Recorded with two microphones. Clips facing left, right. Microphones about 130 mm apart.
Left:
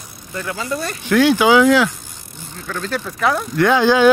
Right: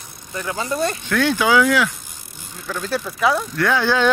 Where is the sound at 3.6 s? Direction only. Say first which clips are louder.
Left 7 dB; 20° left (ahead or behind).